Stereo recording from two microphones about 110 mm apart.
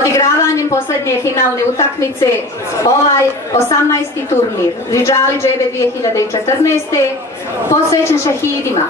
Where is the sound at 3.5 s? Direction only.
30° left (ahead or behind).